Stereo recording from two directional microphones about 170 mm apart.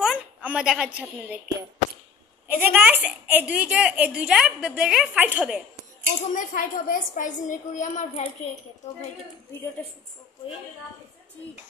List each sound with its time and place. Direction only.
0.0 s a woman's voice: 5° right (ahead or behind)
2.4 s a woman's voice: 10° right (ahead or behind)
6.2 s a woman's voice: 50° left (ahead or behind)